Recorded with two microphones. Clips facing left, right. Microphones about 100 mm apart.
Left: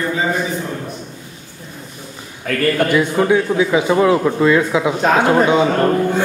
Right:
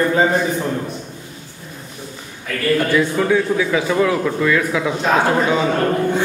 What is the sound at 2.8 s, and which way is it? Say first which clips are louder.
A man's voice: left 2 dB; 20° left (ahead or behind).